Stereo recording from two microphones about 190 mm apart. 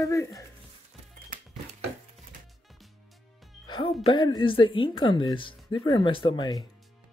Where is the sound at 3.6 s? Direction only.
25° left (ahead or behind).